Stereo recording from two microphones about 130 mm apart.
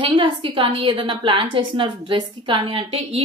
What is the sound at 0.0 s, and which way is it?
A woman's voice, 40° right (ahead or behind).